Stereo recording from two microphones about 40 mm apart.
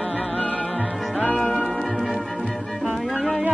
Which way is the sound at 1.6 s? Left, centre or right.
Centre.